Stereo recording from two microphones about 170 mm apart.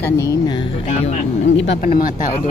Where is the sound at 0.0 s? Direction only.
20° left (ahead or behind).